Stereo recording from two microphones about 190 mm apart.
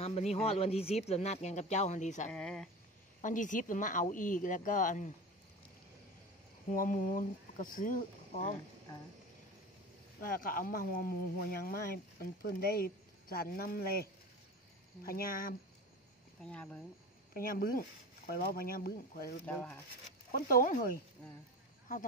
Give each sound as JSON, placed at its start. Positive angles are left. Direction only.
{"t": 0.0, "sound": "speech", "side_deg": 35}
{"t": 2.2, "sound": "speech", "side_deg": 5}
{"t": 3.2, "sound": "speech", "side_deg": 40}
{"t": 6.7, "sound": "speech", "side_deg": 45}
{"t": 10.2, "sound": "speech", "side_deg": 50}
{"t": 15.0, "sound": "speech", "side_deg": 50}
{"t": 16.4, "sound": "speech", "side_deg": 5}
{"t": 17.3, "sound": "speech", "side_deg": 50}
{"t": 19.4, "sound": "speech", "side_deg": 5}
{"t": 20.2, "sound": "speech", "side_deg": 50}